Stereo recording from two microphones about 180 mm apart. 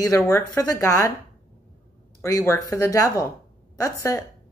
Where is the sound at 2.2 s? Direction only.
15° left (ahead or behind).